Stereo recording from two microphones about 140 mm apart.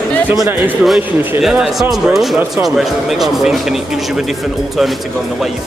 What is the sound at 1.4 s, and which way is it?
Speech, centre (ahead or behind).